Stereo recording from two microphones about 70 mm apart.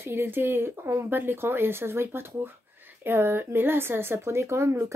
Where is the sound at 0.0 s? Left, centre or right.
Right.